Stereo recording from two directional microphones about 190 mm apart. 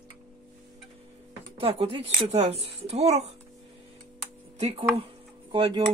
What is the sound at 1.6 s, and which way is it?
Speech, 30° right (ahead or behind).